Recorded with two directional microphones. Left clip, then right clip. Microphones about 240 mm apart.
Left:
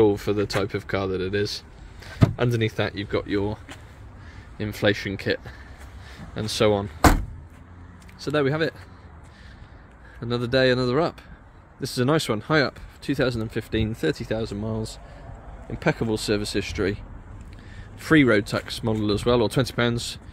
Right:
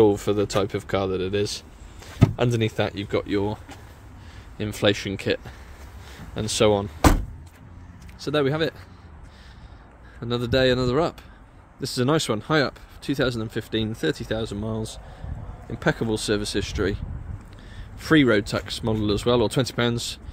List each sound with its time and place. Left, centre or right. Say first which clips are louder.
0.0 s speech: right 1 dB; centre
8.2 s speech: even; centre
10.2 s speech: even; centre